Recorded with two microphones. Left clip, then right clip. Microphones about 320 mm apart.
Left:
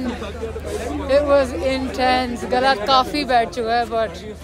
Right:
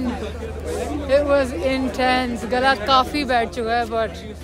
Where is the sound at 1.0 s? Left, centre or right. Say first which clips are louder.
Left 2 dB; centre.